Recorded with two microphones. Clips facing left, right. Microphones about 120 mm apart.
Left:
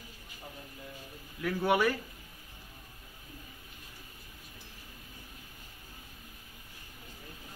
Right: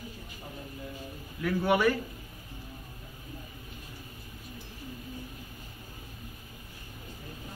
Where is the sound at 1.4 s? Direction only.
5° left (ahead or behind).